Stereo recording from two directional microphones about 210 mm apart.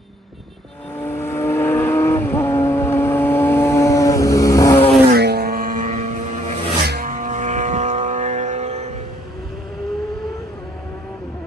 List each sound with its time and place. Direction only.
1.0 s vehicle: 10° left (ahead or behind)
5.1 s vehicle: 50° right (ahead or behind); by 6.6 s 35° right (ahead or behind)
6.8 s music: 45° right (ahead or behind)